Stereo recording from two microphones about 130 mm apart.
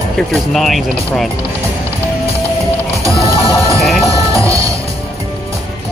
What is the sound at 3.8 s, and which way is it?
Music, centre (ahead or behind).